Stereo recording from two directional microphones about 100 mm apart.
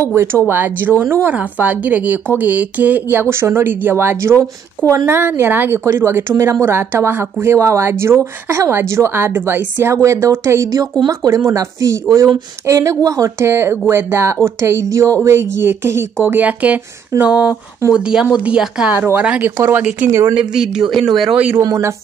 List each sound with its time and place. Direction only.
0.1 s a woman's voice: 25° right (ahead or behind); by 18.9 s 10° right (ahead or behind)
18.9 s a woman's voice: 20° right (ahead or behind)
20.3 s speech: 5° right (ahead or behind)
21.5 s speech: 35° right (ahead or behind)